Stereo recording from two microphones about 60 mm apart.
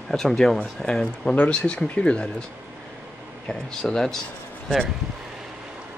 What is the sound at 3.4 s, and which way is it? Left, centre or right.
Speech, centre.